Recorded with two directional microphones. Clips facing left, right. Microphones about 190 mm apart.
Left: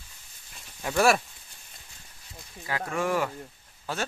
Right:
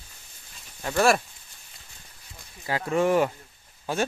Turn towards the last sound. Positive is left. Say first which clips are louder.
# right 5 dB
turn(degrees=-15)  # may be behind; listen again after turning